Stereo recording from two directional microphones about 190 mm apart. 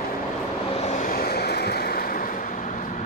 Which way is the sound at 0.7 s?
40° left (ahead or behind).